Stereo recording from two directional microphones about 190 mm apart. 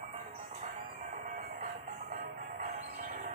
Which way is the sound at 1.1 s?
50° right (ahead or behind).